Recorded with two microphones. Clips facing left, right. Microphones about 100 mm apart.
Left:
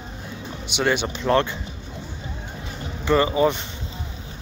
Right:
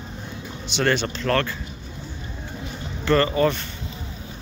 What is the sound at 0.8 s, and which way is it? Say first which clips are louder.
Speech: even; 10° left (ahead or behind).